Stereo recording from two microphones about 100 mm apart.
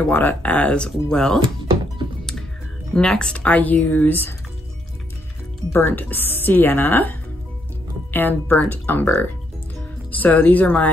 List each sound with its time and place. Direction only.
0.1 s speech: 20° left (ahead or behind)
2.9 s speech: 10° left (ahead or behind)
5.7 s speech: 20° left (ahead or behind)
10.1 s speech: 15° left (ahead or behind)